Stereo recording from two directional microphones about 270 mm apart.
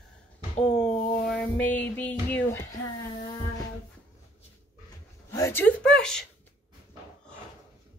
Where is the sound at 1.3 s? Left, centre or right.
Centre.